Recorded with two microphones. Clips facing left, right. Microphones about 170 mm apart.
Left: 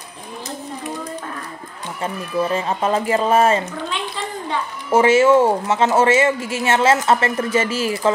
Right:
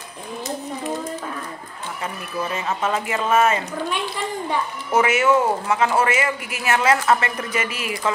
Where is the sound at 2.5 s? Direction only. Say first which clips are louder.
Left 1 dB; 35° left (ahead or behind).